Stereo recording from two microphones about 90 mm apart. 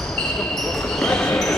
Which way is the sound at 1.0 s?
10° left (ahead or behind).